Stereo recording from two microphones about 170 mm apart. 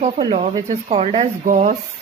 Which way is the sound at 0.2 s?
35° right (ahead or behind).